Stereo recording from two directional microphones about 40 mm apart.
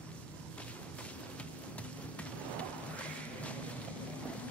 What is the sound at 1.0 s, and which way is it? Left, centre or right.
Music, left.